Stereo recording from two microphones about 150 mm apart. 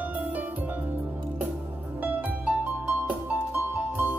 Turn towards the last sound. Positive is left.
turn(degrees=-10)  # may be behind; listen again after turning